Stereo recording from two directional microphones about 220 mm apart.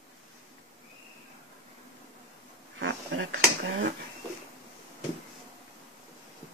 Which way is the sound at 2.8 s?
65° right (ahead or behind).